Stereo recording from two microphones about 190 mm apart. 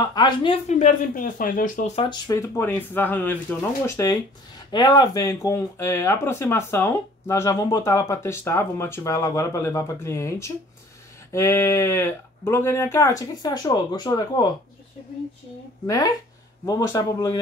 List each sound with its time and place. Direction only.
0.1 s speech: 25° left (ahead or behind)
0.7 s speech: 45° left (ahead or behind)
2.0 s speech: 20° left (ahead or behind)
16.6 s speech: 20° left (ahead or behind)